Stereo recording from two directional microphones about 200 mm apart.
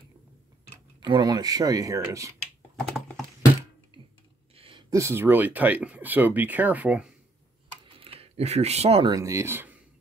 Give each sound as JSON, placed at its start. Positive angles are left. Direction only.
{"t": 1.0, "sound": "speech", "side_deg": -20}
{"t": 4.6, "sound": "a sound", "side_deg": -25}
{"t": 4.9, "sound": "speech", "side_deg": -15}
{"t": 8.0, "sound": "speech", "side_deg": -30}
{"t": 9.1, "sound": "speech", "side_deg": -15}